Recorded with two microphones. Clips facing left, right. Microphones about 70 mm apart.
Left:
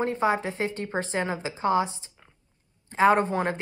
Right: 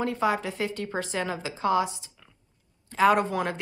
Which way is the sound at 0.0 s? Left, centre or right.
Left.